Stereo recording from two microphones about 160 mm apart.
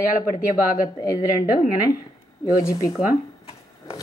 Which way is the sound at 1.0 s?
20° left (ahead or behind).